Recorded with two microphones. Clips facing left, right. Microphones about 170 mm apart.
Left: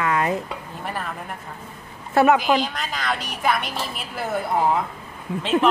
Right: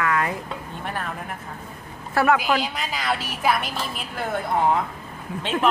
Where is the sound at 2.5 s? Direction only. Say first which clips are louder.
Left 2 dB; 10° right (ahead or behind).